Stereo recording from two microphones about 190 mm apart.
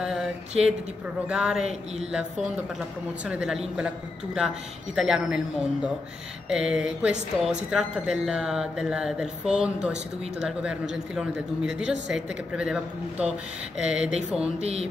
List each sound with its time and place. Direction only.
0.0 s a sound: 5° right (ahead or behind)
1.3 s a man's voice: 5° right (ahead or behind)
14.6 s music: 35° right (ahead or behind)